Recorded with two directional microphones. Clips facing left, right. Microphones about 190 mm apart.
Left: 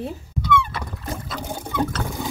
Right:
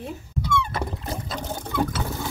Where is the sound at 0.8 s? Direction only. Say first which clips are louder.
Even; 25° right (ahead or behind).